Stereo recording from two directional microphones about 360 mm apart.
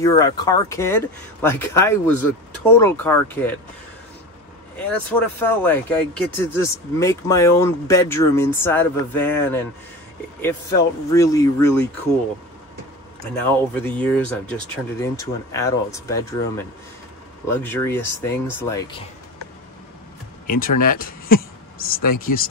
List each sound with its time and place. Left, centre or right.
0.0 s speech: centre
5.4 s speech: centre
13.7 s speech: centre
20.4 s speech: left